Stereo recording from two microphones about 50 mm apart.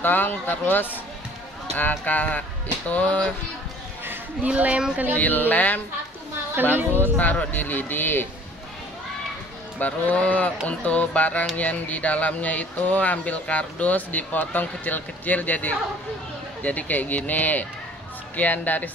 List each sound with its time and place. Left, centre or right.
0.0 s speech: left
2.9 s a sound: left
4.5 s a woman's voice: right
5.1 s speech: left
6.5 s a woman's voice: right
7.0 s speech: left
9.8 s a sound: left
11.5 s speech: left